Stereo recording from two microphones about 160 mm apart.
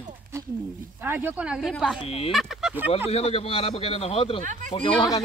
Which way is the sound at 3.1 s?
40° left (ahead or behind).